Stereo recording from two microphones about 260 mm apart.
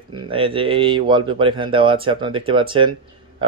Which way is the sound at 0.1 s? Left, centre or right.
Centre.